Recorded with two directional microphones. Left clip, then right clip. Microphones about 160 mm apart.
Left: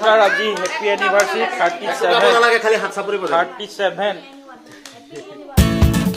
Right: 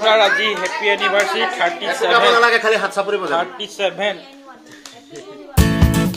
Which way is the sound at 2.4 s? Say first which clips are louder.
Even; 45° right (ahead or behind).